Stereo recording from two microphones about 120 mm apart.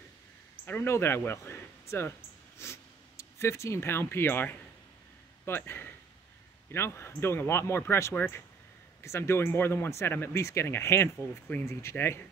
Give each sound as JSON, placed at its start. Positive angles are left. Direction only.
{"t": 0.7, "sound": "a man's voice", "side_deg": 20}